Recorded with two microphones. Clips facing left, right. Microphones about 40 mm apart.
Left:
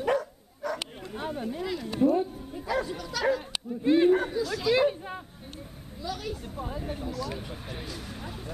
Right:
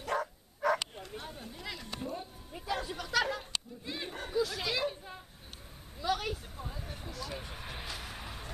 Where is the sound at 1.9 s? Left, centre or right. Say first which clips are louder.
Left 18 dB; centre.